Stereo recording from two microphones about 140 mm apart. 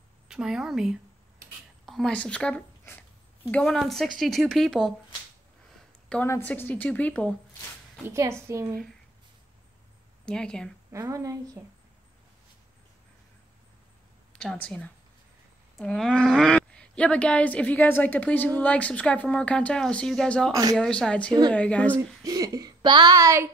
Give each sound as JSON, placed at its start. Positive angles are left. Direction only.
{"t": 0.3, "sound": "speech", "side_deg": -5}
{"t": 6.2, "sound": "a woman's voice", "side_deg": 15}
{"t": 8.0, "sound": "speech", "side_deg": -20}
{"t": 10.2, "sound": "speech", "side_deg": 5}
{"t": 10.9, "sound": "speech", "side_deg": -20}
{"t": 14.4, "sound": "a woman's voice", "side_deg": 5}
{"t": 22.2, "sound": "speech", "side_deg": -25}